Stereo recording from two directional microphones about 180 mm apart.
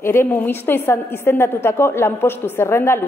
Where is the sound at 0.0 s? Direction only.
15° left (ahead or behind).